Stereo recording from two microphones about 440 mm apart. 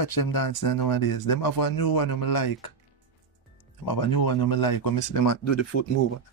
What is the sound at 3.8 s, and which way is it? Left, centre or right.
Speech, left.